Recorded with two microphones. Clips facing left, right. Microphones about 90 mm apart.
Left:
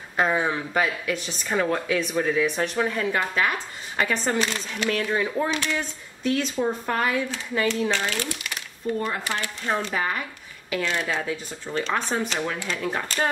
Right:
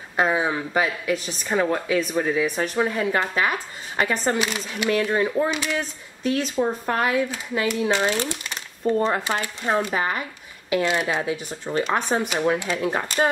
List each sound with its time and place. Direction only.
0.1 s speech: 10° right (ahead or behind)
8.0 s speech: 25° right (ahead or behind)